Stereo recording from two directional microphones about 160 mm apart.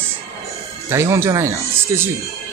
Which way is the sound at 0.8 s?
15° right (ahead or behind).